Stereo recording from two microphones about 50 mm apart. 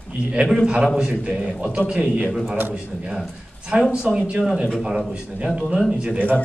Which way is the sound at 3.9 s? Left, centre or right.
Centre.